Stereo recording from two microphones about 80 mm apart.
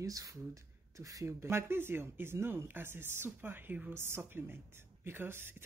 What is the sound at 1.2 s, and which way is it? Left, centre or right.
A woman's voice, right.